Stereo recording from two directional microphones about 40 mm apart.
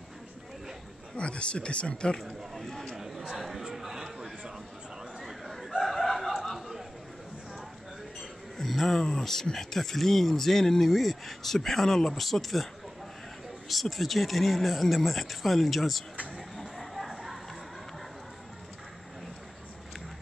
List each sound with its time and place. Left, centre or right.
1.1 s speech: left
2.1 s speech: centre
3.3 s chatter: centre
5.2 s a sound: centre
8.2 s music: centre
9.0 s speech: centre
13.7 s speech: centre
16.3 s a sound: centre